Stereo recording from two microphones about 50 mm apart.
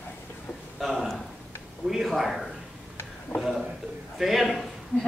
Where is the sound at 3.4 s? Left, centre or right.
Centre.